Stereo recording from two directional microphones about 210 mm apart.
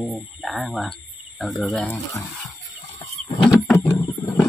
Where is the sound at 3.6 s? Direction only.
10° left (ahead or behind).